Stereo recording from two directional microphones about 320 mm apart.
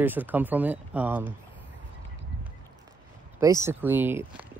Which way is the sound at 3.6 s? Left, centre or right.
Centre.